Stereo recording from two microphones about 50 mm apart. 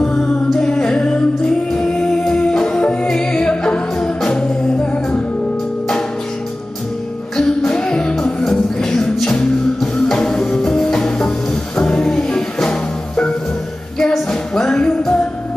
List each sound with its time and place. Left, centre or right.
0.6 s music: centre
2.2 s music: centre
2.8 s music: left
7.3 s music: centre
14.5 s music: centre